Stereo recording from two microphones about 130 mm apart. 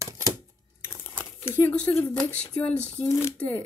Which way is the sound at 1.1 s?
20° left (ahead or behind).